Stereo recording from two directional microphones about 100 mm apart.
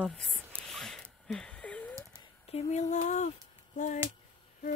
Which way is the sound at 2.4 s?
90° left.